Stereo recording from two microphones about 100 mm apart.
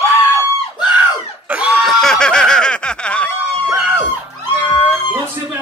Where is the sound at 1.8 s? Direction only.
5° left (ahead or behind).